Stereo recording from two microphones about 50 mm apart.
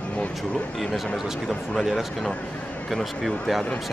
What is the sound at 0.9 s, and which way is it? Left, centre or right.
Speech, centre.